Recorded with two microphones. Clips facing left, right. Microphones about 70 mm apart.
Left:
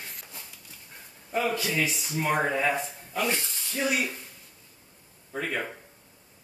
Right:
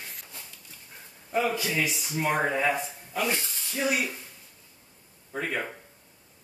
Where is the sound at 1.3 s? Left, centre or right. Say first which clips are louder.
Right 1 dB; centre.